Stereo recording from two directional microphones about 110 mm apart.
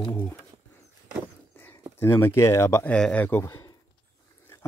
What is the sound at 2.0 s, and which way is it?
Speech, 20° left (ahead or behind).